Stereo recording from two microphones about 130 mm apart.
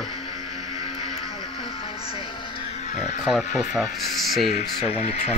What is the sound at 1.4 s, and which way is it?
Music, 40° left (ahead or behind).